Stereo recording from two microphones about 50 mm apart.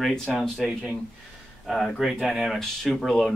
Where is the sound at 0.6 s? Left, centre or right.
Centre.